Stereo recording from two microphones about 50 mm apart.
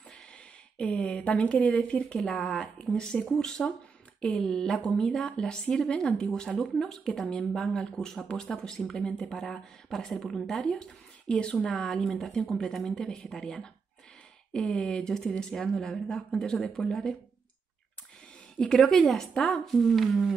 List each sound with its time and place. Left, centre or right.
0.7 s speech: left
2.1 s a woman's voice: centre
10.7 s a woman's voice: centre
18.7 s a woman's voice: centre